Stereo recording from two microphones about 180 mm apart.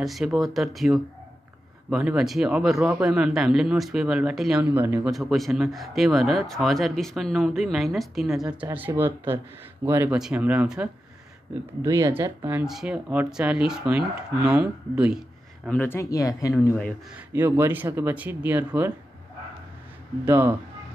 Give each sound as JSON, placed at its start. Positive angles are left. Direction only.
{"t": 0.0, "sound": "speech", "side_deg": 0}
{"t": 5.1, "sound": "speech", "side_deg": 0}
{"t": 15.7, "sound": "speech", "side_deg": 10}
{"t": 17.3, "sound": "speech", "side_deg": -15}
{"t": 20.2, "sound": "speech", "side_deg": -15}